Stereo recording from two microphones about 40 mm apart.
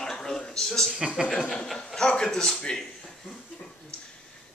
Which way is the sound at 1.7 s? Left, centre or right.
Centre.